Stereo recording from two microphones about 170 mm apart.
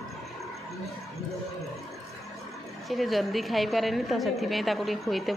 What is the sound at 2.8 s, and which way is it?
A woman's voice, centre (ahead or behind).